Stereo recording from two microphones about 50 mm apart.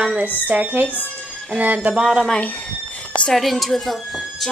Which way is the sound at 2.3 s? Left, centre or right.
Left.